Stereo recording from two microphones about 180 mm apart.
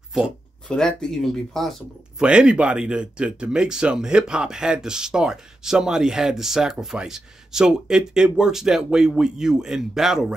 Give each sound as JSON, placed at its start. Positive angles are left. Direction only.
{"t": 0.1, "sound": "speech", "side_deg": 0}